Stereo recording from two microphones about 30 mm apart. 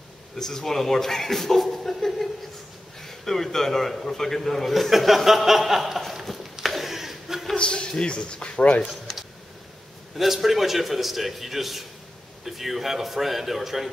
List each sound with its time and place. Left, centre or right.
0.4 s a man's voice: centre
4.7 s a man's voice: centre
6.6 s chuckle: centre
7.5 s a man's voice: left
10.1 s a man's voice: centre